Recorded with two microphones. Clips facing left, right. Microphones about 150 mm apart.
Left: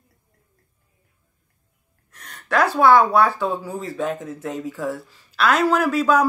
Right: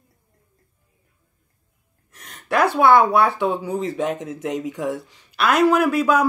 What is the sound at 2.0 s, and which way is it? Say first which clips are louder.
Gasp: right 1 dB; 10° right (ahead or behind).